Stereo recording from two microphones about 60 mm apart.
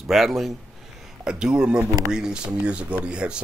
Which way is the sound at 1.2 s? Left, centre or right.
Centre.